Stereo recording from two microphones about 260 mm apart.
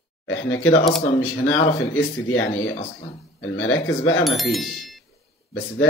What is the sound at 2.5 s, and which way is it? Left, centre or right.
Speech, left.